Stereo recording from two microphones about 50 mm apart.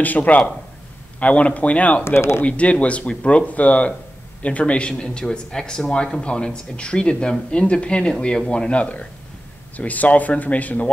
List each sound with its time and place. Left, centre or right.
0.0 s speech: left
2.0 s speech: left
2.4 s speech: left